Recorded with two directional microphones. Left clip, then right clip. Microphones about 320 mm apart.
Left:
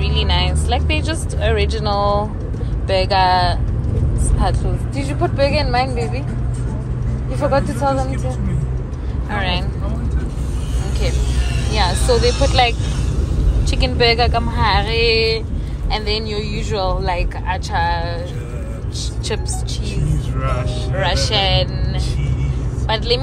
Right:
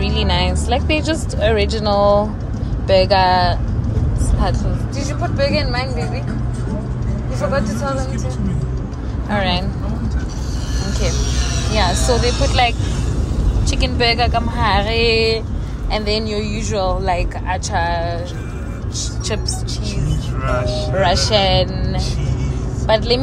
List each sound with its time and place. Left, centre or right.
0.0 s speech: centre
4.9 s speech: centre
7.4 s speech: centre
9.3 s speech: centre
11.7 s speech: centre
12.3 s speech: right
13.7 s speech: centre
21.0 s speech: centre